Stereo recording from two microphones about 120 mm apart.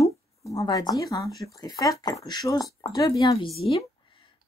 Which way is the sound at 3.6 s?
45° left (ahead or behind).